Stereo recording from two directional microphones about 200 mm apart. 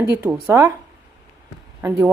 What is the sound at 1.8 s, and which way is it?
Speech, 10° right (ahead or behind).